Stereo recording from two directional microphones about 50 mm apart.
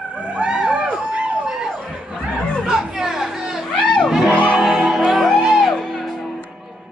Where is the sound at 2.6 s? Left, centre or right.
Centre.